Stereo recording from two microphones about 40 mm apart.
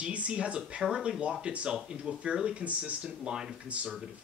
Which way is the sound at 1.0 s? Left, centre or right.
Right.